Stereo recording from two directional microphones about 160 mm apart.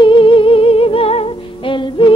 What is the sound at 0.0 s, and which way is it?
Humming, 30° left (ahead or behind).